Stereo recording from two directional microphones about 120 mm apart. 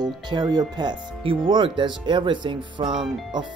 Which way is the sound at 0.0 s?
35° right (ahead or behind).